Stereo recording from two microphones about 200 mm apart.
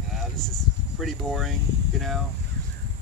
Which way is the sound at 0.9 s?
Centre (ahead or behind).